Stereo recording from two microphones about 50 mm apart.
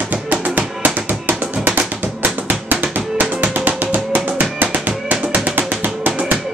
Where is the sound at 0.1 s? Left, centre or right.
Right.